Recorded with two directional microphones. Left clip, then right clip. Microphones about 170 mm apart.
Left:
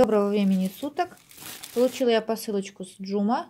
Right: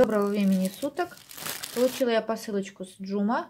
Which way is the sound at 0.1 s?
35° left (ahead or behind).